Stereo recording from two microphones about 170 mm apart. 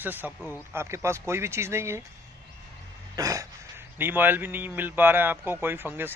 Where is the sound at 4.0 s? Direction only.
10° right (ahead or behind).